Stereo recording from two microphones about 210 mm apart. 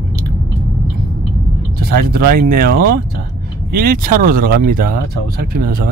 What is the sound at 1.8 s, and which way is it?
Speech, 45° right (ahead or behind).